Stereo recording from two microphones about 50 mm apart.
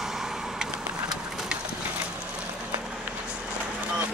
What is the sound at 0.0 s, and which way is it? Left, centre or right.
Vehicle, centre.